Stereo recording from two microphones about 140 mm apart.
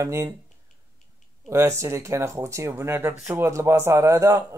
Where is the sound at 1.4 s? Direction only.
20° right (ahead or behind).